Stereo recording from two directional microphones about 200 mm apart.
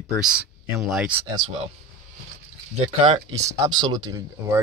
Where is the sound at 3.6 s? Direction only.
20° right (ahead or behind).